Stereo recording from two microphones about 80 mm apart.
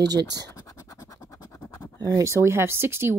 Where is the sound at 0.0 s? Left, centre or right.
Right.